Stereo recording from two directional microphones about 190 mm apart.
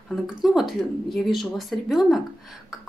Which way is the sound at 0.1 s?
Centre (ahead or behind).